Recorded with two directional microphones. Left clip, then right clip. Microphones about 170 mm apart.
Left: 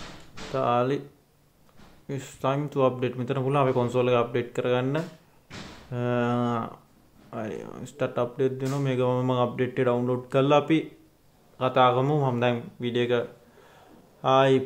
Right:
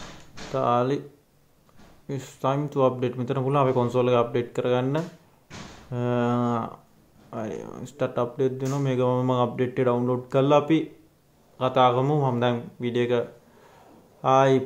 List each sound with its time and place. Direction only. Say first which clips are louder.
0.5 s speech: right 1 dB; 5° right (ahead or behind)
2.0 s speech: right 1 dB; 5° right (ahead or behind)
5.5 s a sound: even; 40° right (ahead or behind)
5.9 s speech: right 1 dB; 5° right (ahead or behind)